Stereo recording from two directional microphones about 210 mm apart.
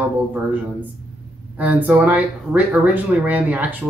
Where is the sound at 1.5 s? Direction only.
10° right (ahead or behind).